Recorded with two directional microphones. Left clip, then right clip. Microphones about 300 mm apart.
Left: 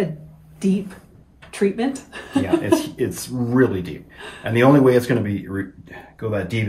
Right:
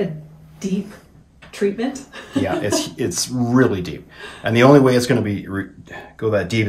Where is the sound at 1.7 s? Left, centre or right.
Left.